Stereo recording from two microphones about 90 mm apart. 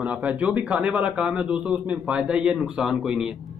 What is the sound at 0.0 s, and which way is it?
A man's voice, 15° right (ahead or behind).